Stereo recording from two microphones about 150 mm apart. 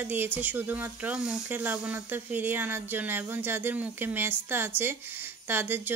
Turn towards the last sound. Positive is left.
turn(degrees=-15)  # may be behind; listen again after turning